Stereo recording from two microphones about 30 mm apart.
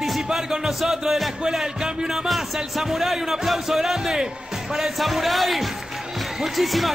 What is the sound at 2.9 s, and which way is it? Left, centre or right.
Music, centre.